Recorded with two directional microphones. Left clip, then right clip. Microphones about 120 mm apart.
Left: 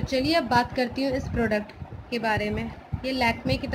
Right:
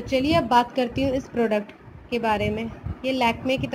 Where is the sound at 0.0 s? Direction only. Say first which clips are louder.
Right 2 dB; 10° right (ahead or behind).